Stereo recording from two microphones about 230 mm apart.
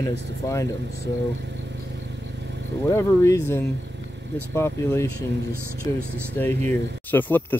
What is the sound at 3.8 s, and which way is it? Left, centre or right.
Vehicle, right.